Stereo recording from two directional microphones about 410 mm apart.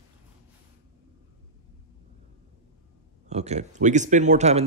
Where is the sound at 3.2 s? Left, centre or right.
Centre.